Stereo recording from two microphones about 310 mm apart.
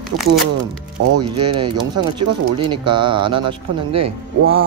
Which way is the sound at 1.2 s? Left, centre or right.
Centre.